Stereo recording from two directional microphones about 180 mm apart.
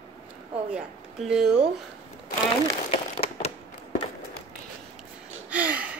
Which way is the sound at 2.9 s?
35° left (ahead or behind).